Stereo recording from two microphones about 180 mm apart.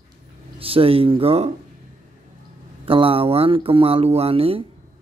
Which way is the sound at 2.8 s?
30° right (ahead or behind).